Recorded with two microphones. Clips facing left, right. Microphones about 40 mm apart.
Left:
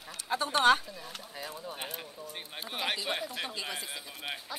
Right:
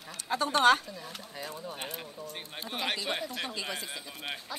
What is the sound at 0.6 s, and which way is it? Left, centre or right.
Speech, centre.